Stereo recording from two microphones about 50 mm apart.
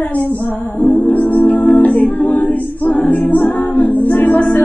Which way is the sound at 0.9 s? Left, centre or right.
Left.